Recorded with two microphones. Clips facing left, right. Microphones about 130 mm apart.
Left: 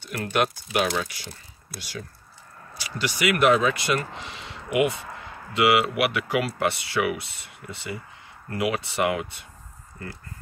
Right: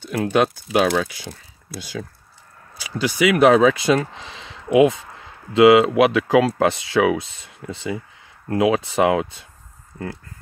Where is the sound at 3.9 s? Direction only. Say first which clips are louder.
Right 8 dB; 90° right.